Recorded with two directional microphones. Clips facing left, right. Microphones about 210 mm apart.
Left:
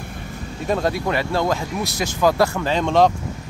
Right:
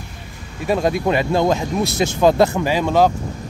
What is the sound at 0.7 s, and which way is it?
Speech, 15° right (ahead or behind).